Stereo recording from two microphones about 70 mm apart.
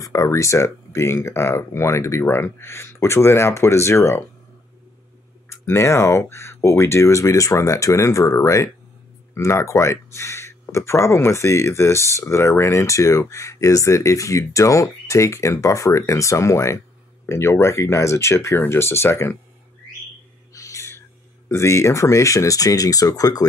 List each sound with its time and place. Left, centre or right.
0.0 s speech: left
5.5 s speech: left
20.5 s owl: left
21.5 s speech: left